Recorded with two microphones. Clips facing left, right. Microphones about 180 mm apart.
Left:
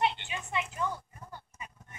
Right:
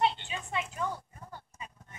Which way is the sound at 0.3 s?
5° left (ahead or behind).